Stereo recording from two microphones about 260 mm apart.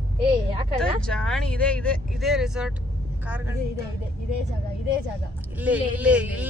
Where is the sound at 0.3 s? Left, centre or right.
Right.